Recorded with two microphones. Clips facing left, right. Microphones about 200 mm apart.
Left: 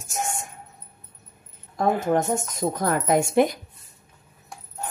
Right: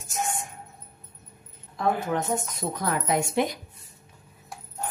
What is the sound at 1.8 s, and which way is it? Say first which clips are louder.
Speech: left 4 dB; 45° left (ahead or behind).